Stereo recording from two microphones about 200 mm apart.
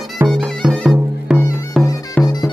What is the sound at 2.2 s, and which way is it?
Music, 10° left (ahead or behind).